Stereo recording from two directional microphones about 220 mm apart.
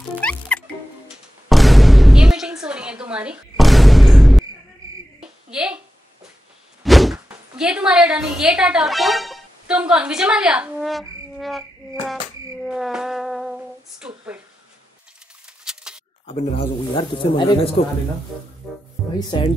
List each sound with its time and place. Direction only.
0.2 s music: 5° left (ahead or behind)
5.5 s a woman's voice: 5° right (ahead or behind)
6.8 s speech: centre (ahead or behind)
12.6 s humming: 5° right (ahead or behind)
15.6 s a sound: 5° right (ahead or behind)
16.3 s speech: 30° left (ahead or behind)
18.6 s speech: centre (ahead or behind)
19.1 s speech: 20° left (ahead or behind)